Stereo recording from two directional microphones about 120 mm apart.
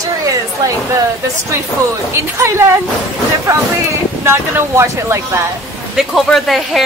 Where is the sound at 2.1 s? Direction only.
20° right (ahead or behind).